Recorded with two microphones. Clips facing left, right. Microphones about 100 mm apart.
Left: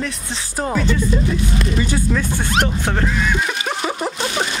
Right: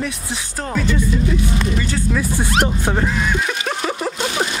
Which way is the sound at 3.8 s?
10° left (ahead or behind).